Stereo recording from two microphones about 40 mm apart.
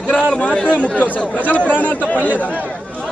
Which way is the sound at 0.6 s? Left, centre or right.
Left.